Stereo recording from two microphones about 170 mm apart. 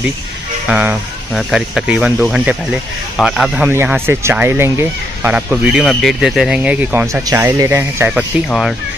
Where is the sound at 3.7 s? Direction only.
15° right (ahead or behind).